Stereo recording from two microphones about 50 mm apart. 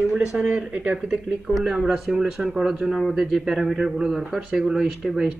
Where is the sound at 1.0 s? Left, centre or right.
Centre.